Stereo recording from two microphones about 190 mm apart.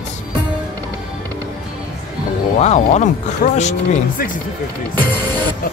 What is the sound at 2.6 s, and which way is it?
Speech, 35° left (ahead or behind).